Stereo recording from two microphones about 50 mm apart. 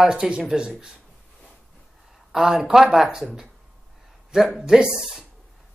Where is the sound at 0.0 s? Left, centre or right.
Centre.